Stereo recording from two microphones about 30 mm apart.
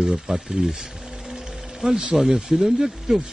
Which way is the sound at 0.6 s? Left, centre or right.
Right.